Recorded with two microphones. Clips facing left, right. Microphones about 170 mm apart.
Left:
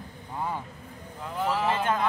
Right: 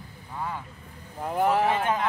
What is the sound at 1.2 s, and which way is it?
Speech, 55° right (ahead or behind).